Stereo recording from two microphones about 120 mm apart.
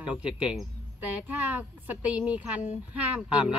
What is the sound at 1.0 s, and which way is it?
Speech, 15° right (ahead or behind).